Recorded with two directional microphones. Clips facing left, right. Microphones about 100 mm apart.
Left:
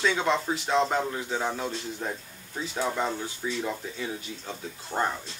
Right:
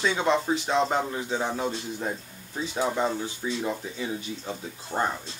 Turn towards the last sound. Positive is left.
turn(degrees=-15)  # may be behind; listen again after turning